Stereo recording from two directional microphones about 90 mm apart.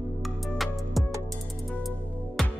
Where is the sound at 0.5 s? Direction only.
Centre (ahead or behind).